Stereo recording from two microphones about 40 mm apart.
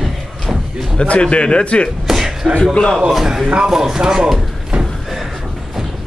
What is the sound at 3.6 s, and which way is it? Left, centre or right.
Speech, centre.